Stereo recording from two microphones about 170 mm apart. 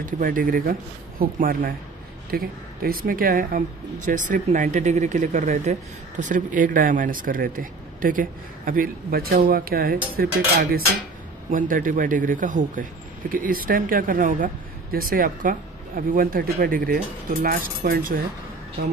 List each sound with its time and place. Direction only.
0.0 s speech: 55° right (ahead or behind)
11.5 s speech: 50° right (ahead or behind)